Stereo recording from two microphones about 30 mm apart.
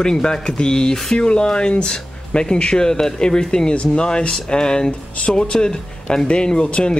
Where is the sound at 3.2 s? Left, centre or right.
Left.